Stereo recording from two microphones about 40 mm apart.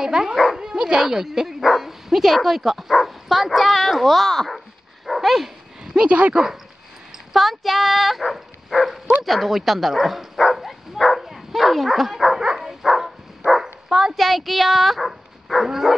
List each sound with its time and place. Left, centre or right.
0.0 s speech: centre
0.6 s dog: centre
1.0 s speech: centre
5.0 s dog: centre
6.0 s speech: right
7.3 s speech: centre
10.3 s dog: centre
12.4 s dog: centre
13.5 s bow-wow: centre
14.1 s speech: centre